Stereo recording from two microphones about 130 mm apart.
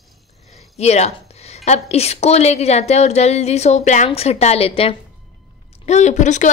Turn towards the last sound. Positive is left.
turn(degrees=65)  # may be behind; listen again after turning